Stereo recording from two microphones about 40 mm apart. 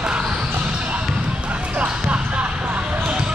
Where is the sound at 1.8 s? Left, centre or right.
Right.